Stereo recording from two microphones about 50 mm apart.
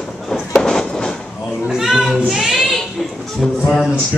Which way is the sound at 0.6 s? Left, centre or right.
Centre.